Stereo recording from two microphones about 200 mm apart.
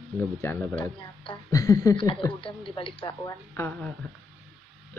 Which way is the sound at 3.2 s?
10° left (ahead or behind).